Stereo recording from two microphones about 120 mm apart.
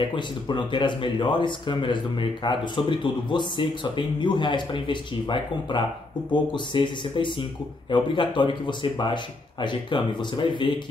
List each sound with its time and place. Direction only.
0.1 s speech: 40° left (ahead or behind)